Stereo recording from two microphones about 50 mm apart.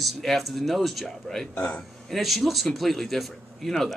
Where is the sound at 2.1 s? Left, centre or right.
Centre.